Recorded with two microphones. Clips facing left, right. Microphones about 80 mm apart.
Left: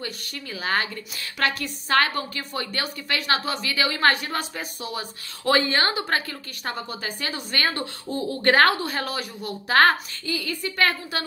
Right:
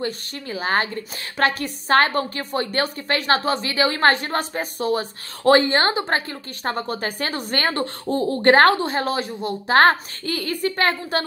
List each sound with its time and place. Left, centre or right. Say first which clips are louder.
0.0 s a woman's voice: right 7 dB; right
6.7 s a woman's voice: right 6 dB; right
10.2 s a woman's voice: right 6 dB; right